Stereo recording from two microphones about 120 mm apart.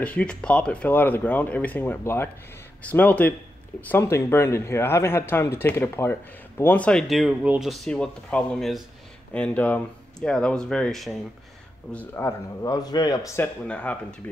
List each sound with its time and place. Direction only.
0.0 s speech: 10° left (ahead or behind); by 7.7 s 10° right (ahead or behind)
7.7 s speech: 5° left (ahead or behind)
12.2 s speech: 25° left (ahead or behind)
13.4 s speech: 10° left (ahead or behind)